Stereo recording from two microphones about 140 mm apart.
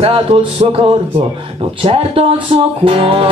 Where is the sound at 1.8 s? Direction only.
45° right (ahead or behind).